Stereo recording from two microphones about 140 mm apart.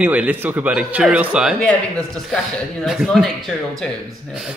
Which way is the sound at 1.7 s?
5° left (ahead or behind).